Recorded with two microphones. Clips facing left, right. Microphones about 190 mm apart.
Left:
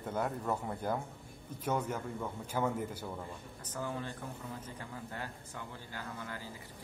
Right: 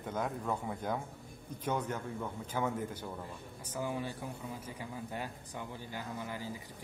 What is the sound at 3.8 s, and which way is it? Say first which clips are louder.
A man's voice: right 2 dB; 10° right (ahead or behind).